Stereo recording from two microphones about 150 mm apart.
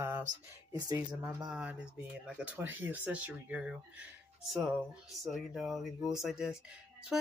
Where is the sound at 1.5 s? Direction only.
5° right (ahead or behind).